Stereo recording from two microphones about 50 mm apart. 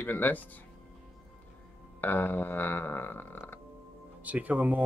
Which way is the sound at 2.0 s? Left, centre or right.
Left.